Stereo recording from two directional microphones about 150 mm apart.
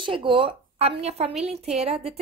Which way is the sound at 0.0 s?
35° right (ahead or behind).